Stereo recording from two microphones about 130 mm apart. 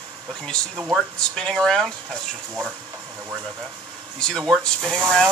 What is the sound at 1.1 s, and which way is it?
Speech, 5° left (ahead or behind).